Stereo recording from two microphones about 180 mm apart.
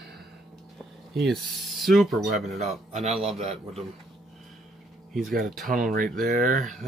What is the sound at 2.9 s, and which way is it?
Speech, 35° right (ahead or behind).